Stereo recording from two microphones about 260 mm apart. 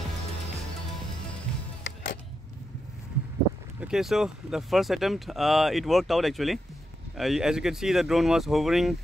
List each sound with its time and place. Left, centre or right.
1.8 s music: left
3.8 s speech: centre